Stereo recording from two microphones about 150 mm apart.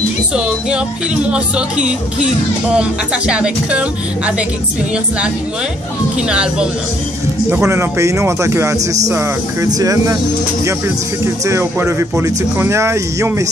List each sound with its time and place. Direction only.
0.3 s speech: 5° right (ahead or behind)
6.1 s speech: 5° right (ahead or behind); by 10.1 s 25° right (ahead or behind)
11.4 s speech: 20° right (ahead or behind)